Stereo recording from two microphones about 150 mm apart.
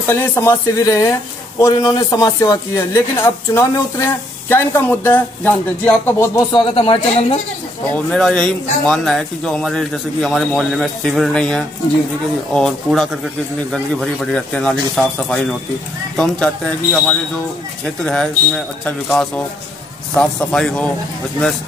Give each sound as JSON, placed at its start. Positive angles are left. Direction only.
{"t": 0.1, "sound": "speech", "side_deg": 15}
{"t": 6.5, "sound": "a woman's voice", "side_deg": 35}
{"t": 7.9, "sound": "speech", "side_deg": 5}